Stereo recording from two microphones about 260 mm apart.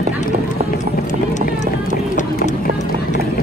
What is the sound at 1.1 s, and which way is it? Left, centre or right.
Run, left.